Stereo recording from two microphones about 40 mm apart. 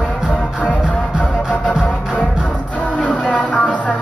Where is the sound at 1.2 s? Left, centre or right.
Left.